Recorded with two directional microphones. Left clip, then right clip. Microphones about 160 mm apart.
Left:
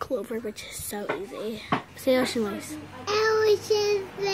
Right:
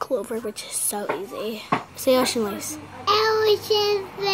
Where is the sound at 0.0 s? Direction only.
10° left (ahead or behind).